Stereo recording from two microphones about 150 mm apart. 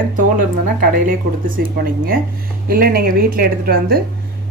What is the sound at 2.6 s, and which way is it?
A woman's voice, 90° right.